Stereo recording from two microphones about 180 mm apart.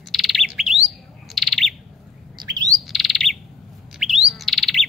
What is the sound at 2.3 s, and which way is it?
Bird, 25° right (ahead or behind).